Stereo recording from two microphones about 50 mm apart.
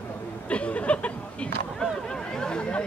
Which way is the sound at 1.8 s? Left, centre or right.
Centre.